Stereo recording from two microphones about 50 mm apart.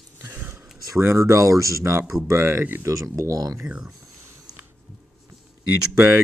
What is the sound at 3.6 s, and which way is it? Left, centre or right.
Speech, centre.